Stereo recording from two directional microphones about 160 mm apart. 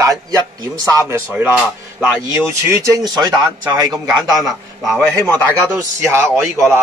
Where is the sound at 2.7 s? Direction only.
20° right (ahead or behind).